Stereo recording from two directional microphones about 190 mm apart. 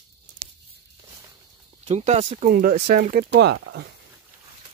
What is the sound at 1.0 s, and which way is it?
Snake, 20° right (ahead or behind).